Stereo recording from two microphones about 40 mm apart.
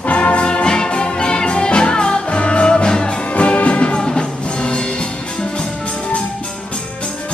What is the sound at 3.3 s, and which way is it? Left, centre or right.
Music, left.